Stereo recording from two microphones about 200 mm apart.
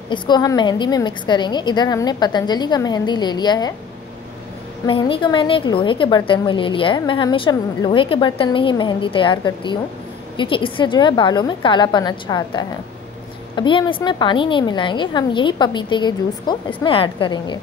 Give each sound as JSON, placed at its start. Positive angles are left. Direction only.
{"t": 0.1, "sound": "a woman's voice", "side_deg": 20}
{"t": 4.8, "sound": "a woman's voice", "side_deg": 25}